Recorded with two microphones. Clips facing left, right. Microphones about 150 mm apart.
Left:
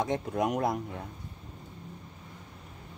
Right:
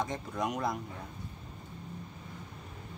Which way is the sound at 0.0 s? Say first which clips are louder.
Left 5 dB; 60° left (ahead or behind).